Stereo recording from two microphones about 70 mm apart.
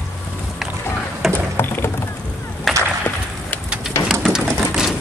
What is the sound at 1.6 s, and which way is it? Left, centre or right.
Clip-clop, left.